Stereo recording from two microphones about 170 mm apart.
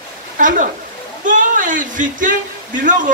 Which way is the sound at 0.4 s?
50° right (ahead or behind).